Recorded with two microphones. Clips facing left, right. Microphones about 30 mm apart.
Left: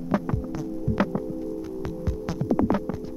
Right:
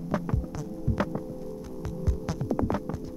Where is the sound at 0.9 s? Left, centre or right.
Centre.